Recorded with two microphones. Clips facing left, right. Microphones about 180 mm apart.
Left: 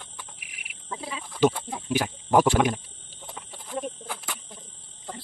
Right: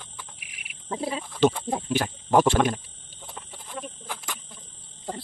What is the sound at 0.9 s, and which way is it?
Sheep, 40° right (ahead or behind).